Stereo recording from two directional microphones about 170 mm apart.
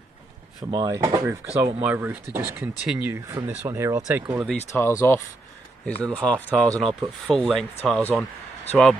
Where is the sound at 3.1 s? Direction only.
20° right (ahead or behind).